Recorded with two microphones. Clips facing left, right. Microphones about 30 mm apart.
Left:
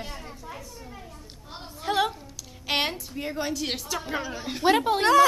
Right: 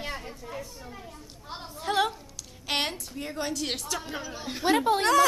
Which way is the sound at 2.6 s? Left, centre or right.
Centre.